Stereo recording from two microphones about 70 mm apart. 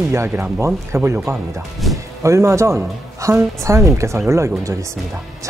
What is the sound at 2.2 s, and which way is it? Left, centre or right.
Speech, right.